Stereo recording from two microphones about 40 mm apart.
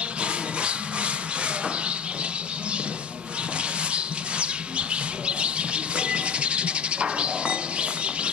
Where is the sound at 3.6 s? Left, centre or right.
Right.